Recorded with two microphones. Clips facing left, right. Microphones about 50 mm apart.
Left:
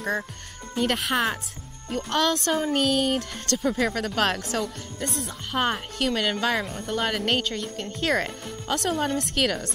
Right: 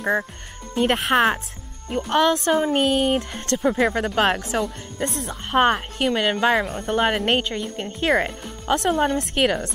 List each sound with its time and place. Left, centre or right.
0.0 s speech: centre
0.7 s speech: right
1.9 s speech: centre